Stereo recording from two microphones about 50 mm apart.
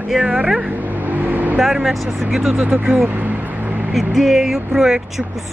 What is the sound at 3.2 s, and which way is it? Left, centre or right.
Vehicle, right.